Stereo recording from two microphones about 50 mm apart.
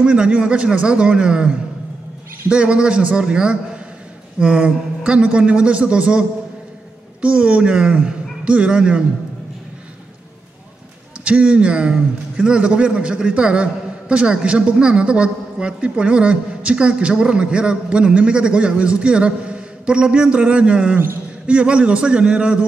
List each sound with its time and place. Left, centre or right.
0.0 s a man's voice: right
2.5 s a man's voice: right
11.2 s a man's voice: right